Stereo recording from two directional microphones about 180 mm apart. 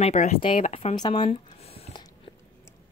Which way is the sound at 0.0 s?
40° left (ahead or behind).